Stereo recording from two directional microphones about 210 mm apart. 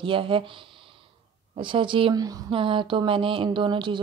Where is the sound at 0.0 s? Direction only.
25° right (ahead or behind).